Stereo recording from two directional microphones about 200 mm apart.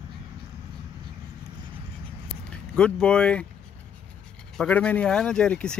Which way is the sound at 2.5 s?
5° left (ahead or behind).